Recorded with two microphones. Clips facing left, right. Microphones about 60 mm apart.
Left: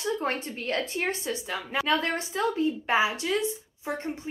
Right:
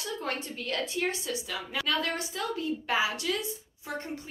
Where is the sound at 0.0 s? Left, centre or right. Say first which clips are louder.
Left 5 dB; left.